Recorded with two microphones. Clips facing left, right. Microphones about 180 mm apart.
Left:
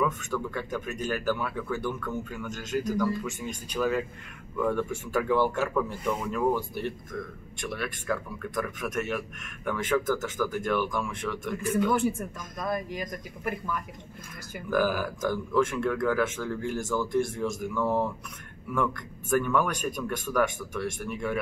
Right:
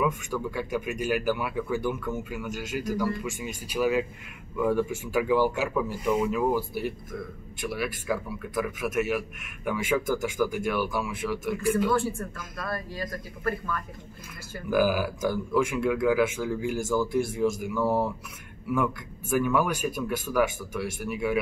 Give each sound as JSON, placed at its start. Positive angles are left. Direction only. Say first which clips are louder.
{"t": 0.0, "sound": "speech", "louder": "right 1 dB", "side_deg": -10}
{"t": 11.9, "sound": "speech", "louder": "even", "side_deg": 20}
{"t": 14.7, "sound": "speech", "louder": "right 2 dB", "side_deg": -10}